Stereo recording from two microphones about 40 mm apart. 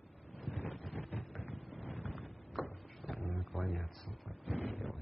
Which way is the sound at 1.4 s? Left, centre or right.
Left.